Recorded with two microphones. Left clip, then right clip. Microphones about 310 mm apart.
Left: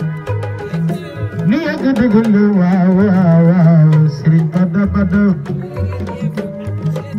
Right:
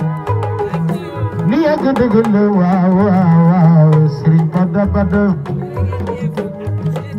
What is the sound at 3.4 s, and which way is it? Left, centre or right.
Music, centre.